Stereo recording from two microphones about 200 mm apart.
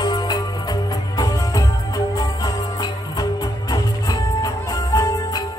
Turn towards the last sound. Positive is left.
turn(degrees=15)  # may be behind; listen again after turning